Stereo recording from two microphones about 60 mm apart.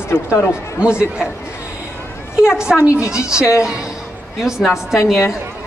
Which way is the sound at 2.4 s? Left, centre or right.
Centre.